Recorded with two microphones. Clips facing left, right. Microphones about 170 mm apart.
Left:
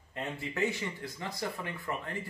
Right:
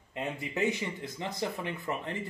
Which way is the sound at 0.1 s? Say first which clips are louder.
Right 2 dB; 20° right (ahead or behind).